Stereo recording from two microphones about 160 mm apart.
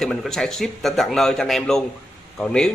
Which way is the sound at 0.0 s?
Centre (ahead or behind).